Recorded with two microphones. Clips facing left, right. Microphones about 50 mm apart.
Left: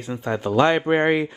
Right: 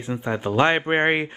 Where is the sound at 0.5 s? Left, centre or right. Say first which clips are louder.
Left 1 dB; right.